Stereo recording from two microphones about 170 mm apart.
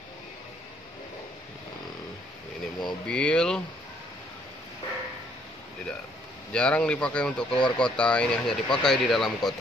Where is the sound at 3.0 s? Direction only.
5° left (ahead or behind).